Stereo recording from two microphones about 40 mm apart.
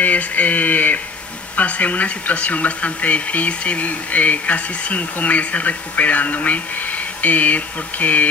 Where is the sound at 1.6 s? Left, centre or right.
Left.